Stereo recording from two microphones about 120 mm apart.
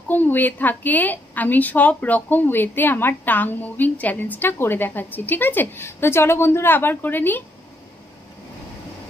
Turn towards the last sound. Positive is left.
turn(degrees=15)  # may be behind; listen again after turning